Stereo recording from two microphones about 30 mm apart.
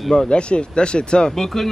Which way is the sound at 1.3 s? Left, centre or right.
Centre.